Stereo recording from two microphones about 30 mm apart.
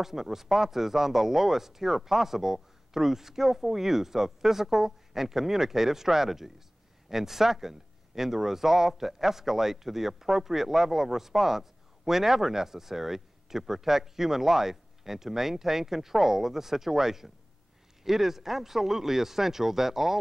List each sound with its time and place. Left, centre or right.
0.0 s speech: centre